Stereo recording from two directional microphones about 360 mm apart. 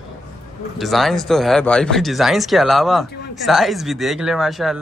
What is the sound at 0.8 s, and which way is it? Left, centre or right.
Speech, centre.